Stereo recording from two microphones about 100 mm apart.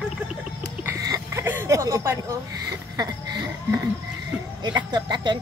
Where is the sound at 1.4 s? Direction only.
25° right (ahead or behind).